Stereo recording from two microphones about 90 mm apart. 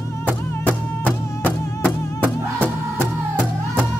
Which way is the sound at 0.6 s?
20° left (ahead or behind).